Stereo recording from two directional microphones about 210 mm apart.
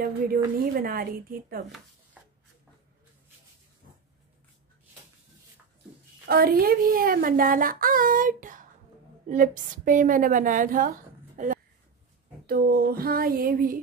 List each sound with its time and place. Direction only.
0.6 s speech: 40° right (ahead or behind)
6.2 s a woman's voice: 45° right (ahead or behind)